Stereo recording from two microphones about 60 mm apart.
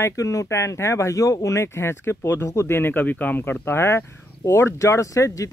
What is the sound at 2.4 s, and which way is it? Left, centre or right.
Speech, left.